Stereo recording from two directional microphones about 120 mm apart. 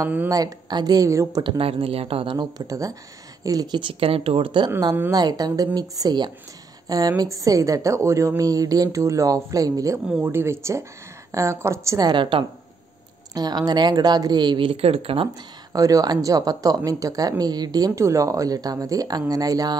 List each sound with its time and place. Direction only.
0.3 s speech: 35° right (ahead or behind)
1.4 s speech: 50° right (ahead or behind)
2.3 s a woman's voice: 30° right (ahead or behind)
12.1 s speech: 45° right (ahead or behind)
13.3 s speech: 35° right (ahead or behind); by 15.2 s 55° right (ahead or behind)
15.7 s speech: 30° right (ahead or behind)